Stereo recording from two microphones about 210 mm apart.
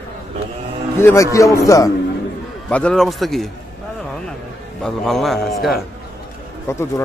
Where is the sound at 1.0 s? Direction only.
10° left (ahead or behind).